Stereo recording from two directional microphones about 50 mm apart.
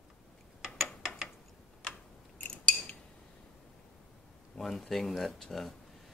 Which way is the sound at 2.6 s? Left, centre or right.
Left.